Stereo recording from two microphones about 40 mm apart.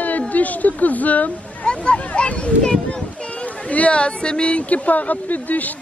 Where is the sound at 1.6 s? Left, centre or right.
Left.